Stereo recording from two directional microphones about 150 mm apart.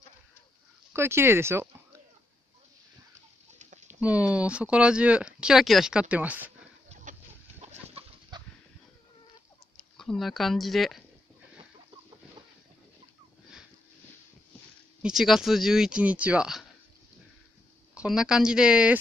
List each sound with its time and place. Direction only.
0.9 s speech: 15° right (ahead or behind)
4.0 s speech: 10° right (ahead or behind)
7.6 s chicken: 45° right (ahead or behind)
8.3 s a sound: 30° right (ahead or behind)
9.8 s speech: 5° left (ahead or behind)
15.0 s speech: 5° right (ahead or behind)
17.9 s speech: 5° right (ahead or behind)